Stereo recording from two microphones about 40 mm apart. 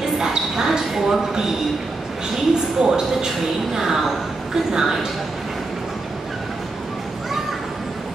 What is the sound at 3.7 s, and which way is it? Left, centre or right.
Speech, centre.